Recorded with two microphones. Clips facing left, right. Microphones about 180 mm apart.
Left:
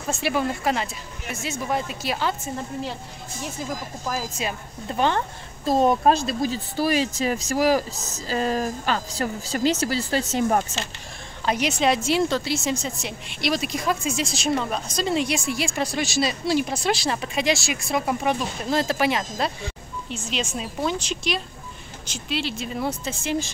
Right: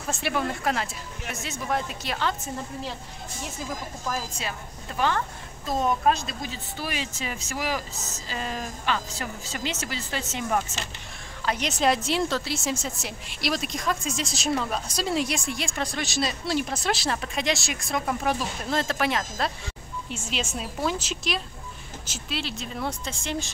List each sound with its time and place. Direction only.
0.2 s a woman's voice: centre (ahead or behind)
4.1 s speech: 10° left (ahead or behind)
4.8 s a woman's voice: 25° left (ahead or behind)
11.6 s a woman's voice: centre (ahead or behind)